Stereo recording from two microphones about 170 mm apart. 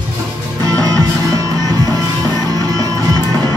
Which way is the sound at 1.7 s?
20° left (ahead or behind).